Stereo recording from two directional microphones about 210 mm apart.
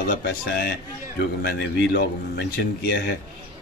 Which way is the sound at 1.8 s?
55° left (ahead or behind).